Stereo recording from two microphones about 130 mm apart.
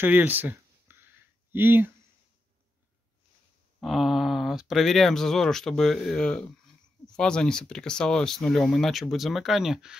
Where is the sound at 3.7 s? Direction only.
Centre (ahead or behind).